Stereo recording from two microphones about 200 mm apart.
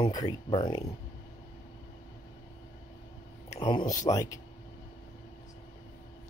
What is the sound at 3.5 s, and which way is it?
Speech, 25° left (ahead or behind).